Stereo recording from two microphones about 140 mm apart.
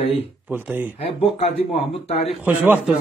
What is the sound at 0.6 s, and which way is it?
Speech, 10° right (ahead or behind).